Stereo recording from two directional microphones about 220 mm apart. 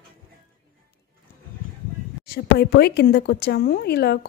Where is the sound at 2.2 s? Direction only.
45° left (ahead or behind).